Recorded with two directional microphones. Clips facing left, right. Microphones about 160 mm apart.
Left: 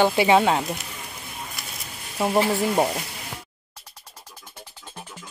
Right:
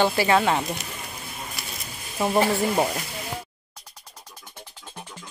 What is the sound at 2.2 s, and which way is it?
Speech, 5° left (ahead or behind).